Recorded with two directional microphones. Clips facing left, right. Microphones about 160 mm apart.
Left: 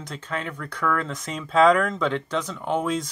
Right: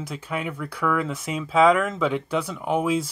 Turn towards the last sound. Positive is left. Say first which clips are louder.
# right 2 dB
turn(degrees=-5)  # may be behind; listen again after turning